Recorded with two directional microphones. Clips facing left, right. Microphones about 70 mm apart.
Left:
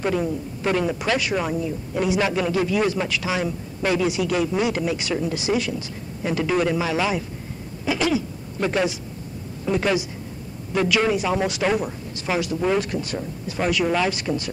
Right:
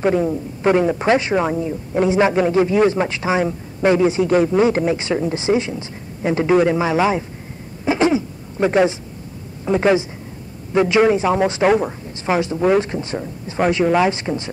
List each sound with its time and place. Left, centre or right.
0.0 s speech: right
7.8 s throat clearing: right
9.7 s speech: right